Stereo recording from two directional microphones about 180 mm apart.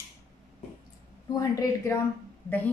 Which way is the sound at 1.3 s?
15° left (ahead or behind).